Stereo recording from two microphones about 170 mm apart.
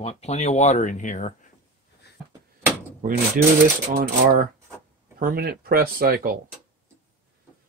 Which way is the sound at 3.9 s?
60° right (ahead or behind).